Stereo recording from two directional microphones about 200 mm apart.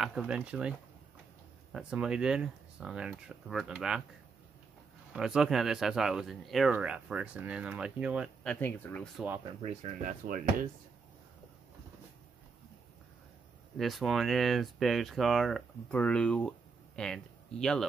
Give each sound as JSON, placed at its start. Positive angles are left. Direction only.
{"t": 0.0, "sound": "speech", "side_deg": 0}
{"t": 5.1, "sound": "speech", "side_deg": 0}
{"t": 8.5, "sound": "speech", "side_deg": 10}
{"t": 9.6, "sound": "speech", "side_deg": -40}
{"t": 13.7, "sound": "speech", "side_deg": 0}